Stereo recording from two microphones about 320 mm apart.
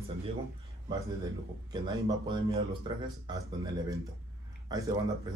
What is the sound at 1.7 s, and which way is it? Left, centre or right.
Speech, centre.